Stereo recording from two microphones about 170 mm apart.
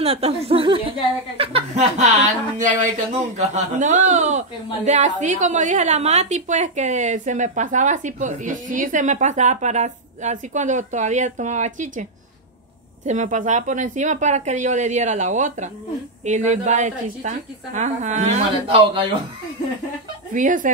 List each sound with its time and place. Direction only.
0.0 s a woman's voice: 35° right (ahead or behind)
20.3 s a woman's voice: 50° right (ahead or behind)